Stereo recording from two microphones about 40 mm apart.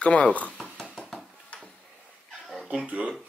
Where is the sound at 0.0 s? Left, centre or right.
Left.